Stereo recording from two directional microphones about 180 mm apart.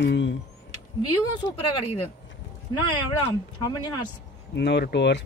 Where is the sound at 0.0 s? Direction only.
80° left.